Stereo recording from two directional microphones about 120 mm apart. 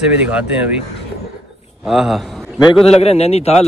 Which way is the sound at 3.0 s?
60° left (ahead or behind).